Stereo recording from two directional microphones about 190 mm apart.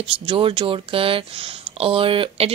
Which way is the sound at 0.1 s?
30° right (ahead or behind).